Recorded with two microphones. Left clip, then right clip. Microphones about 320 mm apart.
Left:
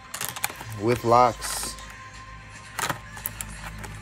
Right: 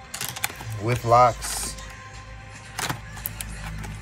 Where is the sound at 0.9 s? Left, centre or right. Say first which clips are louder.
Right 1 dB; centre.